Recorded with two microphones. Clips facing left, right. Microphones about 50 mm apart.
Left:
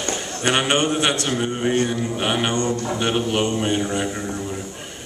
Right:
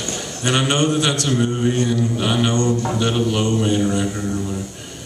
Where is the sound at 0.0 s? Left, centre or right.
Left.